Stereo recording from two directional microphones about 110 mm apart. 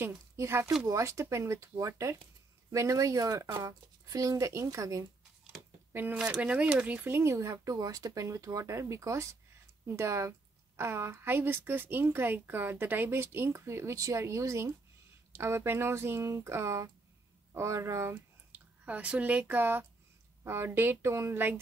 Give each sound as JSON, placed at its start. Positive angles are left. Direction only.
{"t": 0.4, "sound": "speech", "side_deg": -25}
{"t": 5.5, "sound": "speech", "side_deg": -15}
{"t": 18.5, "sound": "speech", "side_deg": -15}